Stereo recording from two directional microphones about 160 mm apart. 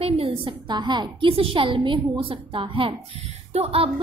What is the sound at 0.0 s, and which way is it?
A woman's voice, 35° right (ahead or behind).